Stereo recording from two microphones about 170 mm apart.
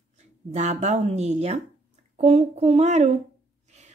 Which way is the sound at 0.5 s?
45° right (ahead or behind).